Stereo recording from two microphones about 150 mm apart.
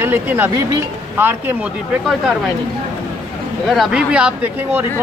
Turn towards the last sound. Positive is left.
turn(degrees=-15)  # may be behind; listen again after turning